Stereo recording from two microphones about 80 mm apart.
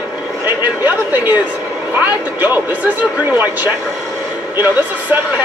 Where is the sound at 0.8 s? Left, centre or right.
Right.